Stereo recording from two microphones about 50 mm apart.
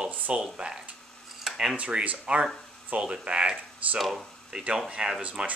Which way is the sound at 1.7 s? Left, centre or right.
Right.